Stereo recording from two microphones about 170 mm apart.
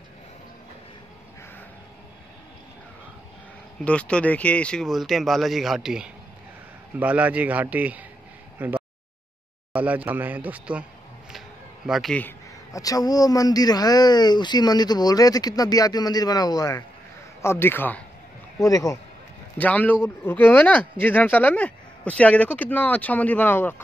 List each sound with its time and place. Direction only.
3.8 s a man's voice: 5° left (ahead or behind); by 8.0 s 10° right (ahead or behind)
8.5 s a sound: 10° right (ahead or behind)
9.8 s a man's voice: 10° right (ahead or behind); by 23.8 s 10° left (ahead or behind)